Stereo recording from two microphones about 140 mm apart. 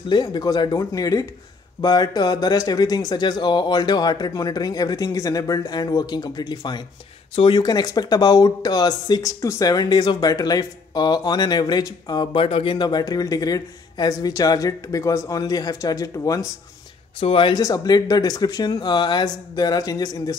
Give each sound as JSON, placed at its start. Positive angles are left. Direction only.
{"t": 0.1, "sound": "speech", "side_deg": 30}
{"t": 17.2, "sound": "speech", "side_deg": 40}